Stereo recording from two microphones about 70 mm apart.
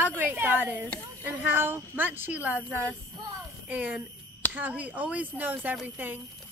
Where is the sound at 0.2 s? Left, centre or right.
Right.